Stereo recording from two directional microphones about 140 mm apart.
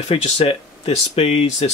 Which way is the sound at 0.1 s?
45° left (ahead or behind).